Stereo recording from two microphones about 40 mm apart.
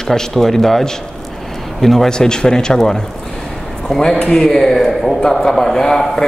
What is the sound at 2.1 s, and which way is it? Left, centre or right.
Speech, centre.